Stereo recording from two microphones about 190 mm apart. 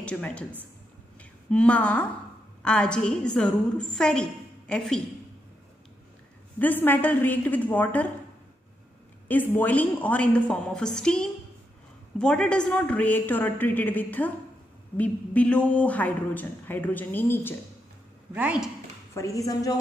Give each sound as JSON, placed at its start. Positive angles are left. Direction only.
{"t": 0.0, "sound": "a woman's voice", "side_deg": 5}
{"t": 6.6, "sound": "speech", "side_deg": 10}
{"t": 9.3, "sound": "speech", "side_deg": 10}
{"t": 18.3, "sound": "speech", "side_deg": -5}
{"t": 19.1, "sound": "speech", "side_deg": 15}